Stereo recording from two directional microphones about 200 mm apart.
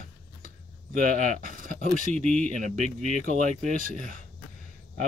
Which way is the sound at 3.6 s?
40° right (ahead or behind).